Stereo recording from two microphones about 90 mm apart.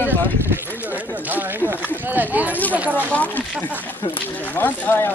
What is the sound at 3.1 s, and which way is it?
Speech, 15° left (ahead or behind).